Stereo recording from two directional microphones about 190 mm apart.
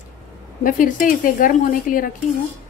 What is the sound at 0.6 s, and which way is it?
Speech, 45° left (ahead or behind).